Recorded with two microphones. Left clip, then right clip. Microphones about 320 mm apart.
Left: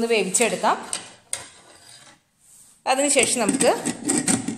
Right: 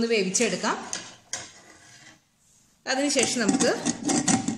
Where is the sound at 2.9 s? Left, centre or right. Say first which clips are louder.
Left 5 dB; centre.